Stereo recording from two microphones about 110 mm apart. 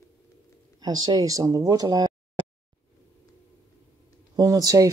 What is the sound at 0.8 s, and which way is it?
Speech, 40° right (ahead or behind).